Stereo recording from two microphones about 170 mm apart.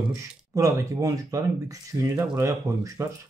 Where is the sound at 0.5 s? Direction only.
20° right (ahead or behind).